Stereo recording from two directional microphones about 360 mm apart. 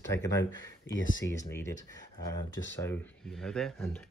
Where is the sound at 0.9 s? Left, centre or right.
Left.